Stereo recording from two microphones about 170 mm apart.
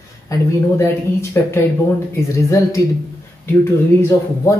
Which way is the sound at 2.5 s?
20° left (ahead or behind).